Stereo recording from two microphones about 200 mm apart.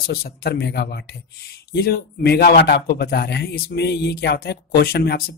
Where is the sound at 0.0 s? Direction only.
50° left (ahead or behind).